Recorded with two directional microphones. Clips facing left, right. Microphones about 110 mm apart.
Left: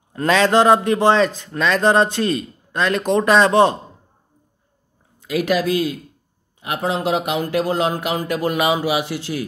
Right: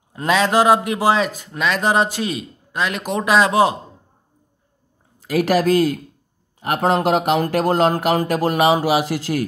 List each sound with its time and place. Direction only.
0.1 s a man's voice: 15° right (ahead or behind)
5.2 s speech: 40° right (ahead or behind)